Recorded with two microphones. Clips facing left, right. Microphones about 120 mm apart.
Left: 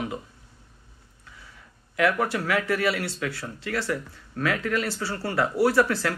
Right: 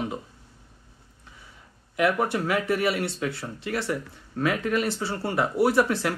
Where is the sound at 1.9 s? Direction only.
20° right (ahead or behind).